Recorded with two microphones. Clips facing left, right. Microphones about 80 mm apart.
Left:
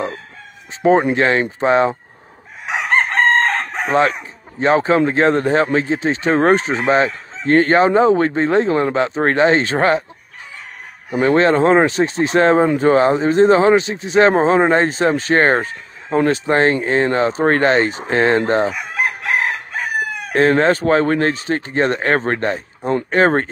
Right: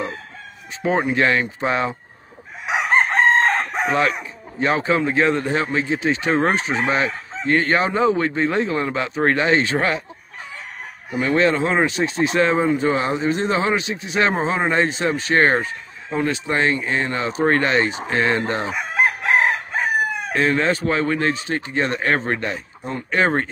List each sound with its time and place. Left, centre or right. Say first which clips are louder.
1.1 s speech: left 3 dB; left
3.2 s chicken: left 2 dB; centre
3.8 s speech: left 6 dB; left
11.1 s speech: left 5 dB; left
18.7 s chicken: right 1 dB; right
20.3 s speech: left 6 dB; left